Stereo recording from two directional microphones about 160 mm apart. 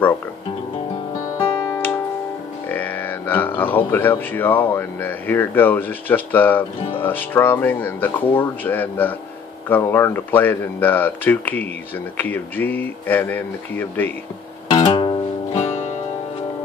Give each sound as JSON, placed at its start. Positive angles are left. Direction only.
{"t": 2.7, "sound": "speech", "side_deg": 10}
{"t": 14.7, "sound": "guitar", "side_deg": 35}